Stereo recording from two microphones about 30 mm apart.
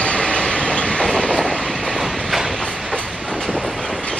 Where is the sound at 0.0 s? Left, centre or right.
Left.